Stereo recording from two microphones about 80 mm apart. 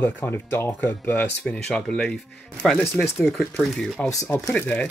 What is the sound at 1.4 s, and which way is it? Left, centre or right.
Speech, centre.